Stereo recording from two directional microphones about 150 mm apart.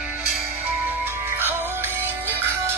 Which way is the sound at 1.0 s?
15° right (ahead or behind).